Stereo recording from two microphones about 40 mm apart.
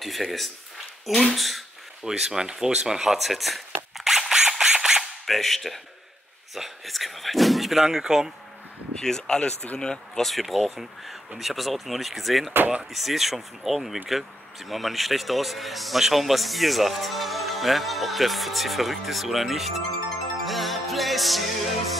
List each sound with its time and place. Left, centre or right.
0.0 s speech: centre
2.0 s a sound: centre
5.2 s speech: centre
8.9 s speech: centre
10.2 s speech: centre
20.4 s music: centre